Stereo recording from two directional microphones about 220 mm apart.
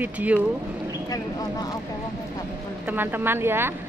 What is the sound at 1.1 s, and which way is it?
Speech, 15° left (ahead or behind).